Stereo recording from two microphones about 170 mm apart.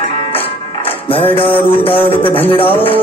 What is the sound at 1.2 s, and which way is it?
Music, 10° left (ahead or behind).